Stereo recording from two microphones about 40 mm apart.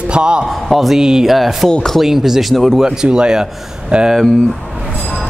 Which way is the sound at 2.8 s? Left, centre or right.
Centre.